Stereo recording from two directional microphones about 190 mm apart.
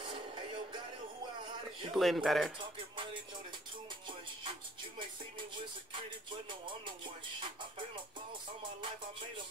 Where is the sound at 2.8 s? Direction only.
25° right (ahead or behind).